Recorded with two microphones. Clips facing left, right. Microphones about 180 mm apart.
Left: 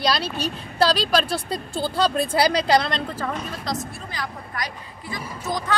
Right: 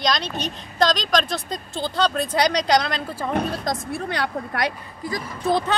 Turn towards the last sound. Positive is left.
turn(degrees=-30)  # may be behind; listen again after turning